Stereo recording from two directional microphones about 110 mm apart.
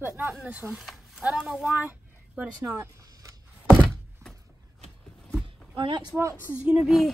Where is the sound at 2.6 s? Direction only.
30° right (ahead or behind).